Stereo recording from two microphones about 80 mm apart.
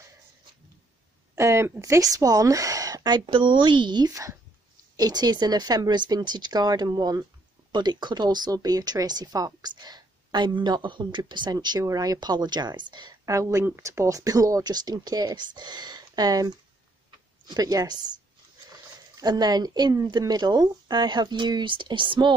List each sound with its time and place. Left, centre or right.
1.3 s a woman's voice: right
4.1 s a woman's voice: right
4.9 s speech: right
7.7 s speech: right
11.5 s speech: right
11.8 s speech: right
13.2 s speech: right